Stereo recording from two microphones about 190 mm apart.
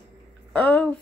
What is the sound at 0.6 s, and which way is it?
Speech, 10° left (ahead or behind).